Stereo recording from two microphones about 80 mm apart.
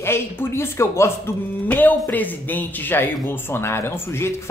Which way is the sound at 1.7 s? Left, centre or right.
Left.